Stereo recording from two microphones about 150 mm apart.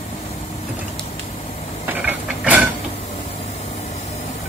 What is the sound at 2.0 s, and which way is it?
Mechanisms, 10° right (ahead or behind).